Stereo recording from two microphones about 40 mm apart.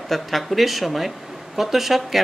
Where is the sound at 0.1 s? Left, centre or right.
Centre.